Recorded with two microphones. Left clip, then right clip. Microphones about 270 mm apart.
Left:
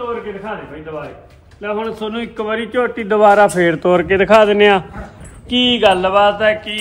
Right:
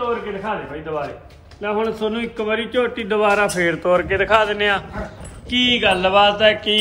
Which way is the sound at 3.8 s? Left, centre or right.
Left.